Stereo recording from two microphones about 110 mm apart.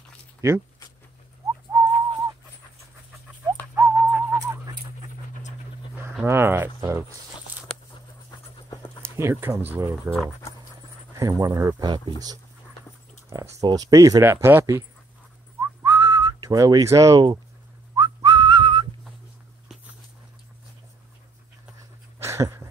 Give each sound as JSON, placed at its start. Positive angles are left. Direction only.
{"t": 1.7, "sound": "whistling", "side_deg": -30}
{"t": 3.7, "sound": "whistling", "side_deg": -15}
{"t": 6.2, "sound": "speech", "side_deg": -20}
{"t": 8.6, "sound": "pant", "side_deg": 40}
{"t": 9.1, "sound": "speech", "side_deg": -25}
{"t": 11.1, "sound": "speech", "side_deg": -30}
{"t": 13.3, "sound": "speech", "side_deg": -35}
{"t": 14.2, "sound": "speech", "side_deg": -20}
{"t": 15.6, "sound": "whistling", "side_deg": -25}
{"t": 22.2, "sound": "dog", "side_deg": -25}